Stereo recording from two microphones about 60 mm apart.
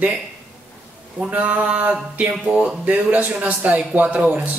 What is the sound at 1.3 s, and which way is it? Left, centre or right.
Speech, right.